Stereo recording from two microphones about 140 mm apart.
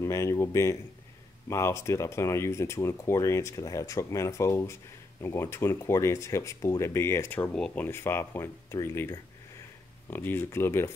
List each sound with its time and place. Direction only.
0.0 s speech: 20° left (ahead or behind)